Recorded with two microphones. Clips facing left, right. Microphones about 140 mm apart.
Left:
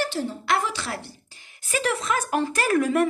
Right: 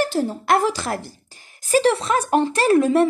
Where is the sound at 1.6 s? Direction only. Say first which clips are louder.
Right 8 dB; 30° right (ahead or behind).